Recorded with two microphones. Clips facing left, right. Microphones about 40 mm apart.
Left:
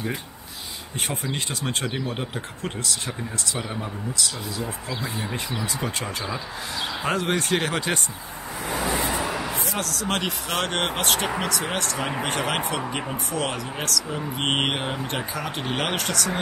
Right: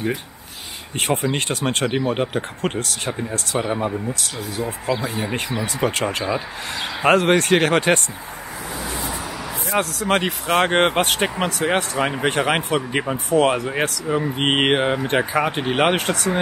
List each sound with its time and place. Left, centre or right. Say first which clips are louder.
0.9 s speech: right 8 dB; right
1.2 s speech: right 7 dB; right
1.9 s speech: right 8 dB; right
3.1 s speech: right 6 dB; right
5.0 s speech: right 5 dB; right
8.7 s vehicle: left 4 dB; left
9.8 s speech: right 9 dB; centre